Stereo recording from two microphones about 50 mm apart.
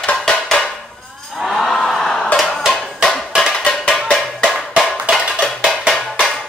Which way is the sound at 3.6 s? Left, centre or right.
Centre.